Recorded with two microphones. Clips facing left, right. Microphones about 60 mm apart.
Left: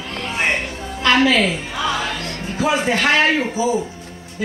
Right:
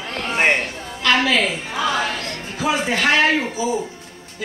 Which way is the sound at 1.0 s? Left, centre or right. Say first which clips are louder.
Left 3 dB; centre.